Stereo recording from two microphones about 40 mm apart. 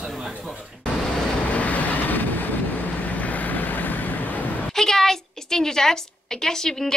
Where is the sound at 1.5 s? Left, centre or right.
Left.